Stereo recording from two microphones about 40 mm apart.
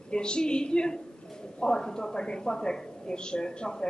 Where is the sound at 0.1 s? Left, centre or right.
Left.